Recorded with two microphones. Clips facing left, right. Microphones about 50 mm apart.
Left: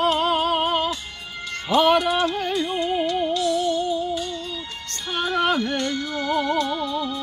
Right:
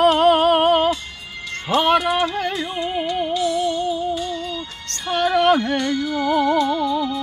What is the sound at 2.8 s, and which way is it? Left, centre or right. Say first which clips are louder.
Music: right 2 dB; centre.